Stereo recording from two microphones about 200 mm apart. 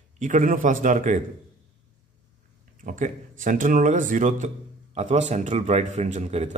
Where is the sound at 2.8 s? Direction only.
40° right (ahead or behind).